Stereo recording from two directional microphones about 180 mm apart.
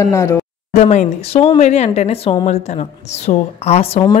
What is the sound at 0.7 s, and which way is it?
Speech, 40° left (ahead or behind).